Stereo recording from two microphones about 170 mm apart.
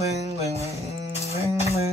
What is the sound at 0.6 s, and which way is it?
Music, 40° left (ahead or behind).